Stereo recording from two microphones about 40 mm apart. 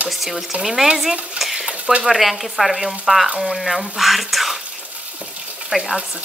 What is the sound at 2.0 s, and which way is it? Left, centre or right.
Speech, centre.